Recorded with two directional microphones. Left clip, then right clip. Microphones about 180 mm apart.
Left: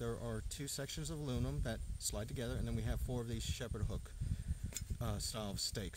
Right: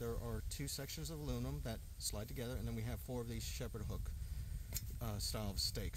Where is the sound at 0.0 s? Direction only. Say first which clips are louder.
Left 2 dB; 45° left (ahead or behind).